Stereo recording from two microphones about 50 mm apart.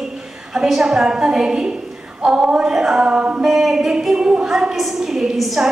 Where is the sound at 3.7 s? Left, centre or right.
Centre.